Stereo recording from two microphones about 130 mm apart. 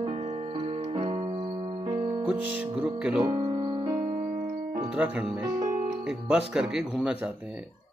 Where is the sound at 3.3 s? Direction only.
30° right (ahead or behind).